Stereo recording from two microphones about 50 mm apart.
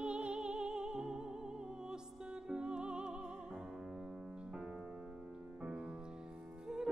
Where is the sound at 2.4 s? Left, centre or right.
Centre.